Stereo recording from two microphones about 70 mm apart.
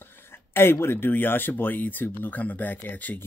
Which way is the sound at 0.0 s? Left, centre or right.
Left.